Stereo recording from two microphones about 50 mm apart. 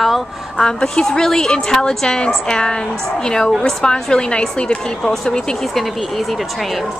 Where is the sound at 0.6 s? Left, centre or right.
Centre.